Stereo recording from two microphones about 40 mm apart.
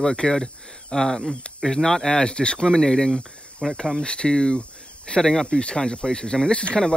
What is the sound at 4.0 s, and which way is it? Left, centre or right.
Speech, left.